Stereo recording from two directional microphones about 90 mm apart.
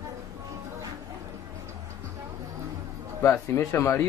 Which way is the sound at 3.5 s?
30° left (ahead or behind).